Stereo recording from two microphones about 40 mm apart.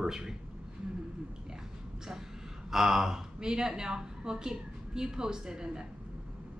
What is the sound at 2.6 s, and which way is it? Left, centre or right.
A woman's voice, centre.